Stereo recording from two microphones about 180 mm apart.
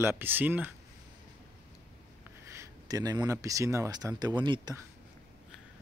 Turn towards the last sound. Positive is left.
turn(degrees=-25)  # may be behind; listen again after turning